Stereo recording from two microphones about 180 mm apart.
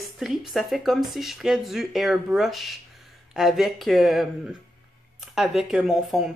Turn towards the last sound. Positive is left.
turn(degrees=0)  # may be behind; listen again after turning